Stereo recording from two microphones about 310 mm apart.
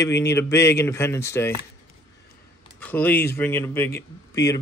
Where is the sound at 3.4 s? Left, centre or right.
Centre.